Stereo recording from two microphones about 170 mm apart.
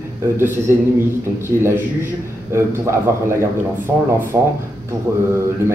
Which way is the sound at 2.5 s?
15° right (ahead or behind).